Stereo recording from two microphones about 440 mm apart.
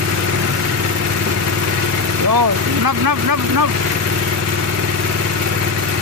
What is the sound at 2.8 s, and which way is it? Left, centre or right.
Speech, right.